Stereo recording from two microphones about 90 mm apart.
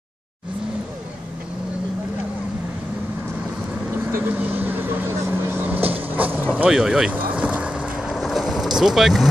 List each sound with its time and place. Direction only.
4.0 s vehicle: 20° right (ahead or behind)
6.5 s speech: 10° right (ahead or behind)
7.1 s vehicle: 15° right (ahead or behind)
8.7 s speech: 5° right (ahead or behind)